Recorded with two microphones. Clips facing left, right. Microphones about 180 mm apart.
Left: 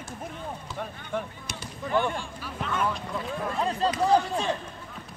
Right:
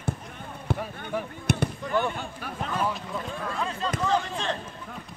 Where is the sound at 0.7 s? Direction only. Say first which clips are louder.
Right 8 dB; 60° right (ahead or behind).